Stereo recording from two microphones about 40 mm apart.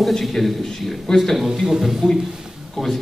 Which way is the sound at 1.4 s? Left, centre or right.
Centre.